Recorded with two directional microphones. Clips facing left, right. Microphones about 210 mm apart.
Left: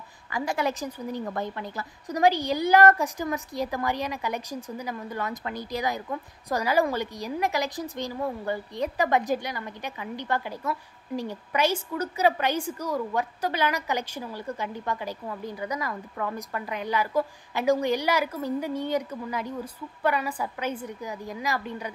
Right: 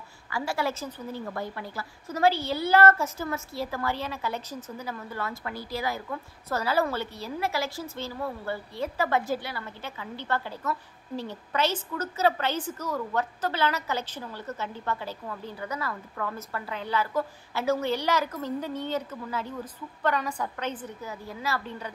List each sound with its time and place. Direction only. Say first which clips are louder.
0.3 s a woman's voice: left 2 dB; 20° left (ahead or behind)